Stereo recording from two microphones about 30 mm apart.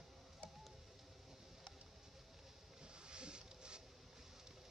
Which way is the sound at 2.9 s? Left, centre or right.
Right.